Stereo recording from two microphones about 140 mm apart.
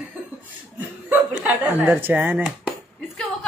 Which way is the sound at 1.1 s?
10° right (ahead or behind).